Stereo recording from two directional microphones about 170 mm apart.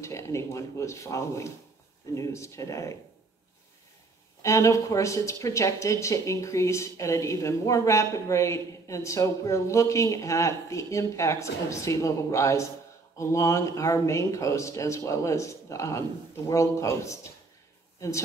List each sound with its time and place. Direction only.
0.0 s a woman's voice: 15° left (ahead or behind)
4.4 s a woman's voice: 15° left (ahead or behind)